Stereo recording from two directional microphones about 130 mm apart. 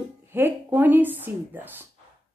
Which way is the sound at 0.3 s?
15° right (ahead or behind).